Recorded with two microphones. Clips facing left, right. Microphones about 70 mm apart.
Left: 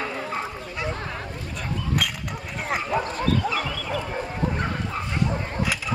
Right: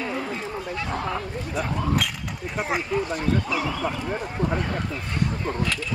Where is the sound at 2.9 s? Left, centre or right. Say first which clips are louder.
Even; left.